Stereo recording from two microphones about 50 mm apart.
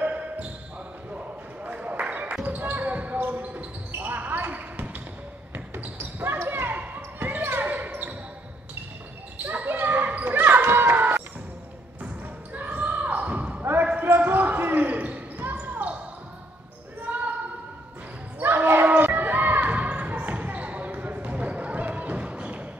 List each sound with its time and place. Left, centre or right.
0.0 s basketball bounce: right
1.1 s a sound: right
2.4 s basketball bounce: right
6.1 s basketball bounce: right
6.7 s basketball bounce: right
9.4 s basketball bounce: right
12.5 s basketball bounce: right
17.1 s basketball bounce: right
18.4 s basketball bounce: right